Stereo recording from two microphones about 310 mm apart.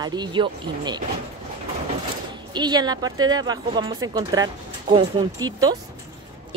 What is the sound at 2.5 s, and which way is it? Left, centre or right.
A woman's voice, centre.